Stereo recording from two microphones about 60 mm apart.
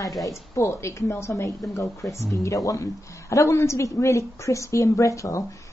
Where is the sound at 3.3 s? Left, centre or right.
Left.